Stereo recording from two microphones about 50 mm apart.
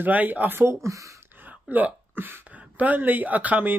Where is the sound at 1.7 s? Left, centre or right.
Right.